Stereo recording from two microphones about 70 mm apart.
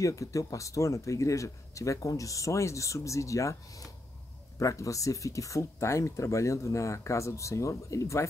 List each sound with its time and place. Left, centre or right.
0.0 s speech: left